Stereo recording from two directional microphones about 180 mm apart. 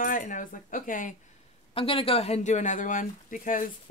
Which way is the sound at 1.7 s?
30° left (ahead or behind).